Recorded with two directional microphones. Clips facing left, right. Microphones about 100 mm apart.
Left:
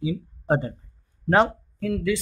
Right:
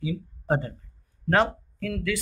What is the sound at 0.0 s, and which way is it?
Speech, 15° left (ahead or behind).